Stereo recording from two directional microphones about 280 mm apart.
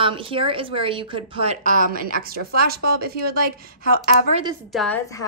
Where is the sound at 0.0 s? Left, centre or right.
Centre.